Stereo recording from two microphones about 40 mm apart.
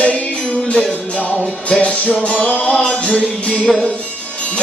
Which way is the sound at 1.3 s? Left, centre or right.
Left.